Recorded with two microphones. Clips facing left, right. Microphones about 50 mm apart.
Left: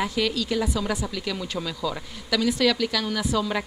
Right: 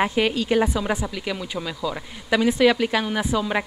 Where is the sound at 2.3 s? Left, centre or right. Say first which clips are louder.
Right 4 dB; right.